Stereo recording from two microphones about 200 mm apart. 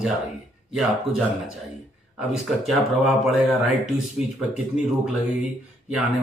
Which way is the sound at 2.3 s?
Centre (ahead or behind).